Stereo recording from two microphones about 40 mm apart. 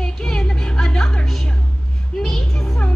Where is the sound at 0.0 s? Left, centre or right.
Centre.